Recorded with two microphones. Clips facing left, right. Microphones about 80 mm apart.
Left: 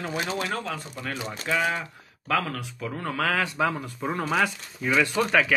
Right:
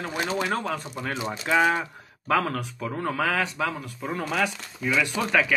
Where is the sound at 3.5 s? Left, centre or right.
Centre.